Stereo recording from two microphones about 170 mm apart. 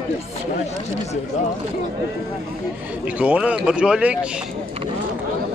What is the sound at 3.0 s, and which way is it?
Speech, 5° right (ahead or behind).